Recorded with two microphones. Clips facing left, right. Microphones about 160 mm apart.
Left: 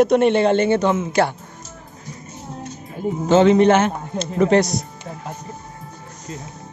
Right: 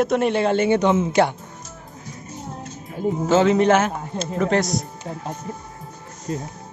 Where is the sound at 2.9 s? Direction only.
5° right (ahead or behind).